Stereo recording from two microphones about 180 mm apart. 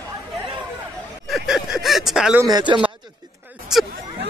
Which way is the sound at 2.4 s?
25° right (ahead or behind).